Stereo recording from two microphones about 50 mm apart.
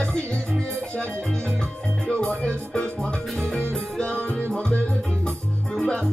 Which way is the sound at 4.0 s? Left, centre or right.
Left.